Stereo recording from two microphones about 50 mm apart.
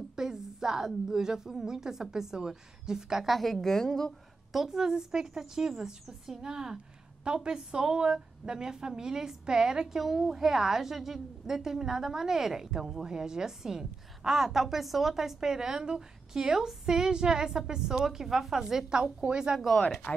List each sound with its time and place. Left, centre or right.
0.1 s a woman's voice: centre
3.3 s a woman's voice: centre
4.5 s a woman's voice: centre
20.1 s speech: left